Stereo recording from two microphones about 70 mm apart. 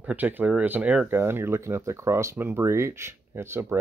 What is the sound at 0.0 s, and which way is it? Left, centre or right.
Speech, right.